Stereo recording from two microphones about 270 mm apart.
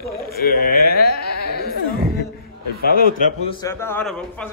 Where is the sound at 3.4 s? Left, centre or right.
Centre.